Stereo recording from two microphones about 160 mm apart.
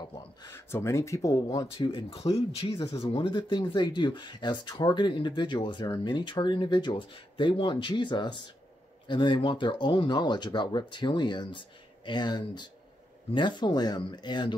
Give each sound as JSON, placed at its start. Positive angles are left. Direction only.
{"t": 0.0, "sound": "speech", "side_deg": 15}
{"t": 1.9, "sound": "speech", "side_deg": 35}